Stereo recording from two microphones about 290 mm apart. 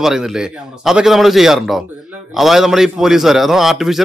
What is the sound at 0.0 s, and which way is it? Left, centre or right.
Speech, centre.